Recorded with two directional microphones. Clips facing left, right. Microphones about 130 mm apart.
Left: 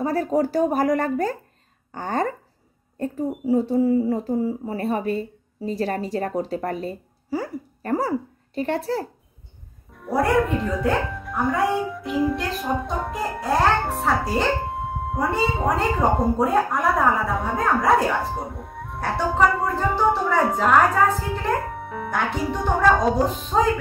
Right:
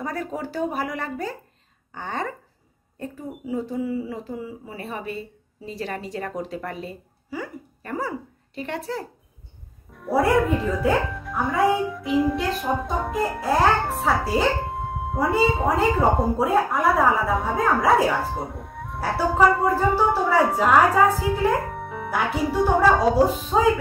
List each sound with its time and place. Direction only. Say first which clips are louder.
0.0 s speech: left 8 dB; 35° left (ahead or behind)
2.0 s a sound: left 5 dB; 45° left (ahead or behind)
3.0 s speech: left 8 dB; 35° left (ahead or behind)
9.9 s speech: right 1 dB; centre (ahead or behind)
21.6 s speech: left 1 dB; centre (ahead or behind)